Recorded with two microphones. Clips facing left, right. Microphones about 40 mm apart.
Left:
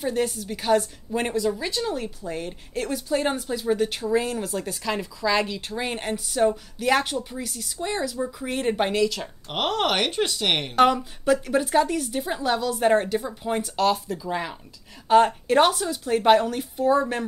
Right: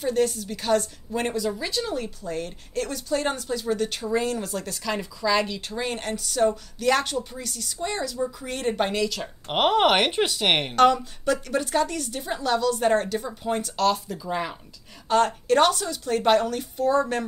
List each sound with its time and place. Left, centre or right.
0.0 s a woman's voice: centre
9.5 s speech: centre
10.8 s a woman's voice: centre
15.0 s a woman's voice: centre